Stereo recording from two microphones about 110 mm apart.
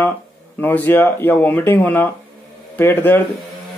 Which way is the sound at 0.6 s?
15° left (ahead or behind).